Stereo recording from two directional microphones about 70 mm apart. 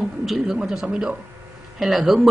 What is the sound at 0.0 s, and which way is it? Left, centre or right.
A man's voice, centre.